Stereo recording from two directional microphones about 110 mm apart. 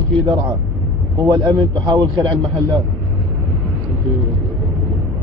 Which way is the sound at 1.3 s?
35° right (ahead or behind).